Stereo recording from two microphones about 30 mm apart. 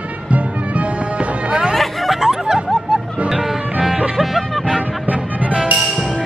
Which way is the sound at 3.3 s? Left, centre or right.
Centre.